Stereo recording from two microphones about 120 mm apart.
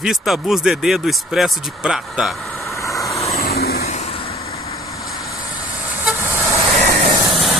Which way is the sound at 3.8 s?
65° left (ahead or behind).